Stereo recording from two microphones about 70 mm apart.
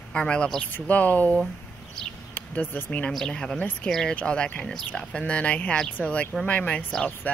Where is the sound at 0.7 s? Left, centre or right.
Left.